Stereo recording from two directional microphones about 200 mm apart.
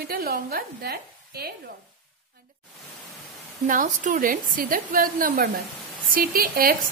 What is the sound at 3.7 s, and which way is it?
A woman's voice, 40° right (ahead or behind).